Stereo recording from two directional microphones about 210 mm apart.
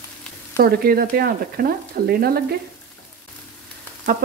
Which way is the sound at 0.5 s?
45° right (ahead or behind).